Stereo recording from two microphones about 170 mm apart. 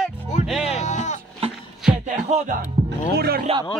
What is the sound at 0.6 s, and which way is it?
Music, 40° left (ahead or behind).